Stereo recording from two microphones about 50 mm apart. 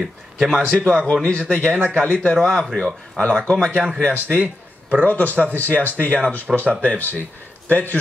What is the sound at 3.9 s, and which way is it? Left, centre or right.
A man's voice, right.